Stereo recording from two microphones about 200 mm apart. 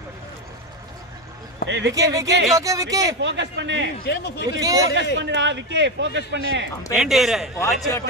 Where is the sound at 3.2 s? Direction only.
60° right (ahead or behind).